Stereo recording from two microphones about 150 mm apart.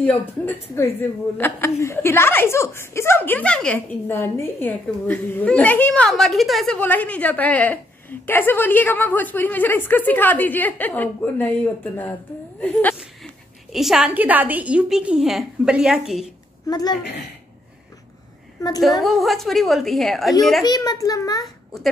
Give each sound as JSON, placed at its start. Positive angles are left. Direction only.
{"t": 0.0, "sound": "speech", "side_deg": 10}
{"t": 12.9, "sound": "a woman's voice", "side_deg": 0}
{"t": 16.6, "sound": "a child's voice", "side_deg": 25}
{"t": 18.6, "sound": "a woman's voice", "side_deg": 25}
{"t": 19.0, "sound": "a woman's voice", "side_deg": 0}
{"t": 20.6, "sound": "a child's voice", "side_deg": 25}